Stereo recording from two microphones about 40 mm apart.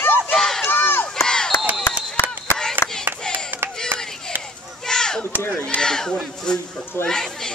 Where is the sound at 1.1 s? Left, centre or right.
Centre.